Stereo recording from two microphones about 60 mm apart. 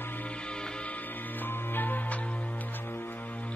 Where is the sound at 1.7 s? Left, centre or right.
Left.